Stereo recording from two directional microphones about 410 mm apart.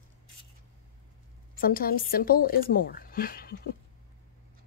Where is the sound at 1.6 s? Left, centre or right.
Left.